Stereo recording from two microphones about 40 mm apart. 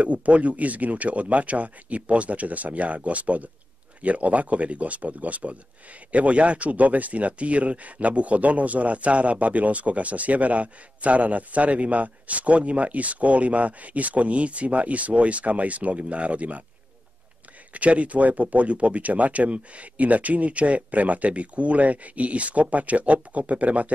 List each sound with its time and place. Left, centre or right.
0.0 s speech: right
17.7 s speech: right